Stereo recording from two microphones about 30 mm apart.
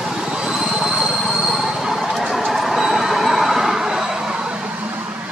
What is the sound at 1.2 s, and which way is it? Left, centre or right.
Train, right.